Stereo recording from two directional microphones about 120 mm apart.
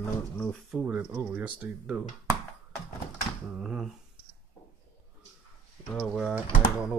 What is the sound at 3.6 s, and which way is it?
Speech, 5° right (ahead or behind).